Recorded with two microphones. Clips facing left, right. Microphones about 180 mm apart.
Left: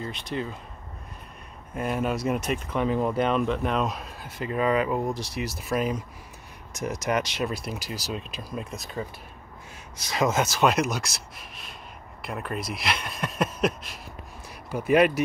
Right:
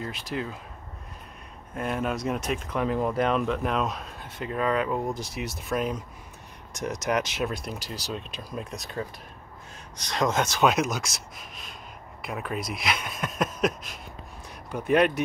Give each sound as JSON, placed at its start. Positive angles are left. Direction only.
{"t": 0.0, "sound": "speech", "side_deg": -5}
{"t": 1.8, "sound": "speech", "side_deg": 0}